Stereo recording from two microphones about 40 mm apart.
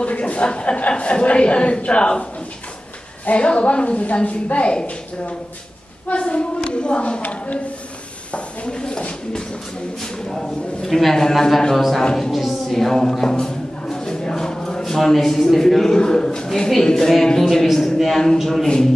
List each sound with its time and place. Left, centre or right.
0.0 s a woman's voice: left
3.3 s a woman's voice: left
6.0 s a woman's voice: left
8.3 s a woman's voice: left
10.3 s a man's voice: centre
12.0 s a man's voice: centre
12.3 s a man's voice: centre